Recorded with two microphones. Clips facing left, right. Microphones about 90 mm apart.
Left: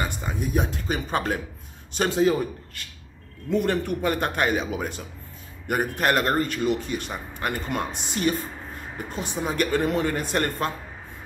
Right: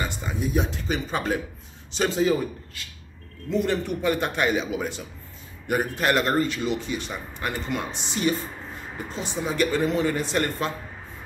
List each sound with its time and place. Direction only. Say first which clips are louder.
0.4 s a man's voice: right 1 dB; 50° left (ahead or behind)